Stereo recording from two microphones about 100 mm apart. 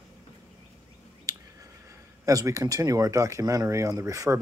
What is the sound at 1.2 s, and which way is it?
Speech, 30° right (ahead or behind).